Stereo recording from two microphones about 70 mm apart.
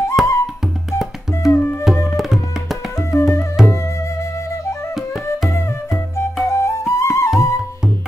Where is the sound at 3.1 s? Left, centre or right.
Left.